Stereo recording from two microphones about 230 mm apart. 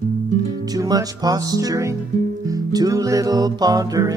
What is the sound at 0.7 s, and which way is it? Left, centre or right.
Music, centre.